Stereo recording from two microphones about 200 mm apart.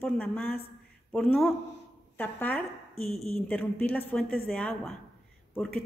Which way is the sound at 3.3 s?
10° left (ahead or behind).